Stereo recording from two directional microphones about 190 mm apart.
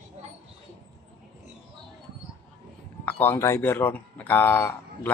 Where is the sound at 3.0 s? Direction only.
10° left (ahead or behind).